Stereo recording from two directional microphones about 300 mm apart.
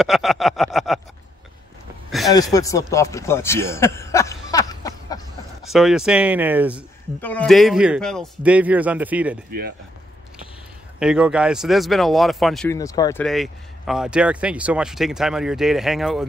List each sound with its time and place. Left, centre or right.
0.0 s a sound: centre
2.2 s a sound: centre
5.6 s speech: centre
7.2 s speech: centre
9.5 s speech: right
11.0 s speech: centre